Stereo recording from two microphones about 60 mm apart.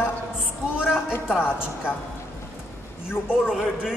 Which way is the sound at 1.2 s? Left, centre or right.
Centre.